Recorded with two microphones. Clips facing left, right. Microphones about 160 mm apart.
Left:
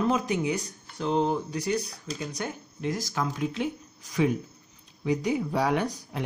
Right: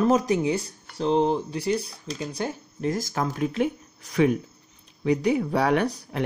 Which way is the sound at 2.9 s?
50° right (ahead or behind).